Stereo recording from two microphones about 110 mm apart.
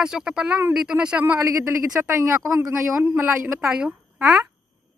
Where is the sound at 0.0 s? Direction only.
5° right (ahead or behind).